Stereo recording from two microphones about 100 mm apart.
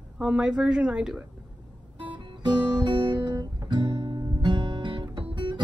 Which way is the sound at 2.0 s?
50° right (ahead or behind).